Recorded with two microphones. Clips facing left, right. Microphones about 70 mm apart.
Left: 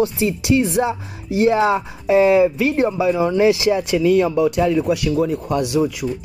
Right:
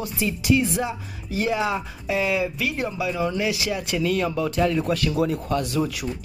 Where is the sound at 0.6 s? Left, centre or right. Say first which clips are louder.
Left 7 dB; left.